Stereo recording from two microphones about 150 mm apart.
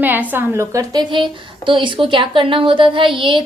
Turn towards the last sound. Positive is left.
turn(degrees=-35)  # may be behind; listen again after turning